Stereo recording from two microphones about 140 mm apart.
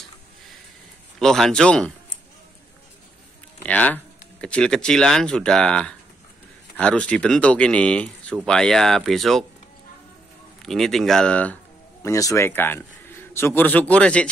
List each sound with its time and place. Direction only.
1.2 s speech: 5° left (ahead or behind)
3.6 s speech: 10° left (ahead or behind)
10.6 s speech: centre (ahead or behind)
12.0 s a man's voice: 20° left (ahead or behind)